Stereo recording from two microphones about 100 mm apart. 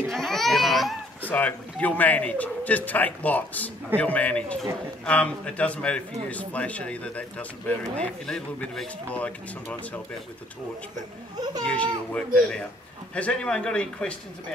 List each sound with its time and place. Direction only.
0.1 s a sound: centre (ahead or behind)
1.3 s a man's voice: 15° left (ahead or behind)
11.6 s a man's voice: 10° left (ahead or behind)